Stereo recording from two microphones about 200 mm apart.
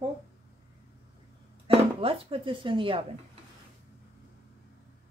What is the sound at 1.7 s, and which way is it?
A woman's voice, 30° right (ahead or behind).